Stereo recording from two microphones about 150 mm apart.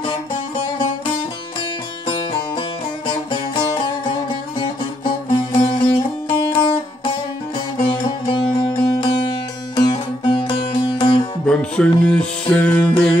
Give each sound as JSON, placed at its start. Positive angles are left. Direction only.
{"t": 2.0, "sound": "music", "side_deg": 35}
{"t": 11.4, "sound": "music", "side_deg": 5}